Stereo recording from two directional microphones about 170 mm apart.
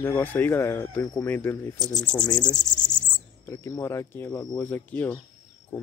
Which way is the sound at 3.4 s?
15° left (ahead or behind).